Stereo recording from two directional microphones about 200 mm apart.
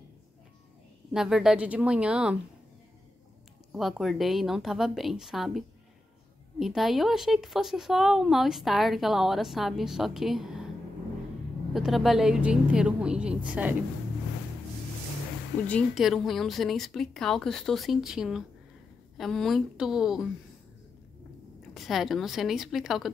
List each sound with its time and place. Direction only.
1.1 s a woman's voice: centre (ahead or behind)
3.7 s a woman's voice: centre (ahead or behind)
6.6 s a woman's voice: centre (ahead or behind)
11.7 s a woman's voice: centre (ahead or behind)
15.6 s a woman's voice: 5° left (ahead or behind)
21.7 s a woman's voice: centre (ahead or behind)